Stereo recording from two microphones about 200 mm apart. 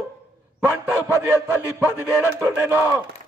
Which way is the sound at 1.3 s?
5° right (ahead or behind).